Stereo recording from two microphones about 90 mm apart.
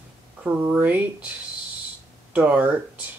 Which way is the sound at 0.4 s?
15° right (ahead or behind).